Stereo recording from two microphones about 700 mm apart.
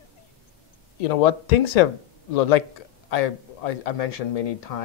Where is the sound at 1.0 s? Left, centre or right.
Left.